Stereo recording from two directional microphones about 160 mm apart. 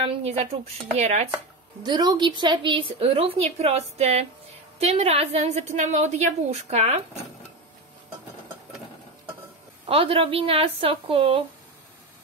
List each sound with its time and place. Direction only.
0.0 s a woman's voice: 40° right (ahead or behind)
1.8 s a woman's voice: 25° right (ahead or behind)
9.8 s a woman's voice: 35° right (ahead or behind)